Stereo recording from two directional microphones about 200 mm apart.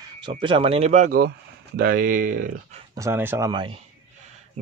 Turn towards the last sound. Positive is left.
turn(degrees=-25)  # may be behind; listen again after turning